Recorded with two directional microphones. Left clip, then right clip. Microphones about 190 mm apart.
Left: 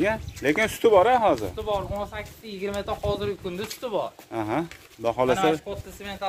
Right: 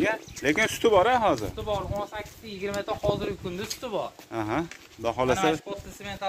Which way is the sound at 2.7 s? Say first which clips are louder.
Right 1 dB; 60° left (ahead or behind).